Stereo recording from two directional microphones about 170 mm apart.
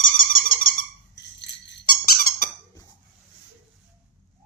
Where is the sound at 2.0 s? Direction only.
55° left (ahead or behind).